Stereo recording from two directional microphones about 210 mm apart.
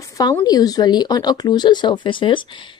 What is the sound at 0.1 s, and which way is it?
Speech, 15° left (ahead or behind).